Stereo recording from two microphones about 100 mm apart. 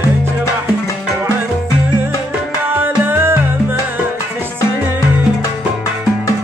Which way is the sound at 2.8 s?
20° right (ahead or behind).